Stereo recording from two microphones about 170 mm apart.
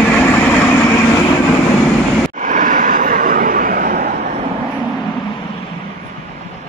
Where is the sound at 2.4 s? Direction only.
50° right (ahead or behind).